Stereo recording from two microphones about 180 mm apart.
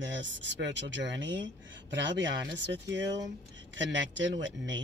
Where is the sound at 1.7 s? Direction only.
80° right.